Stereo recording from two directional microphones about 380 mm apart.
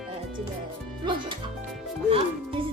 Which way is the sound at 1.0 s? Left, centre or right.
Centre.